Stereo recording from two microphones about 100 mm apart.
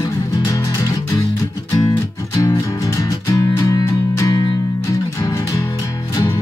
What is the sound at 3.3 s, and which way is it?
Music, 35° left (ahead or behind).